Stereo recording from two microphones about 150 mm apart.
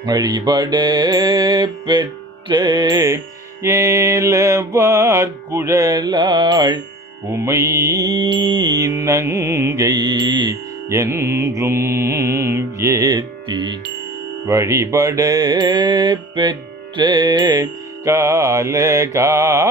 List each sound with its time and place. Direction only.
0.0 s music: 25° right (ahead or behind)
7.2 s mantra: 20° right (ahead or behind)
14.5 s music: 20° right (ahead or behind)